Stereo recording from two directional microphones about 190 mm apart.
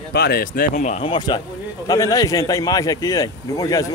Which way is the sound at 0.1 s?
55° left (ahead or behind).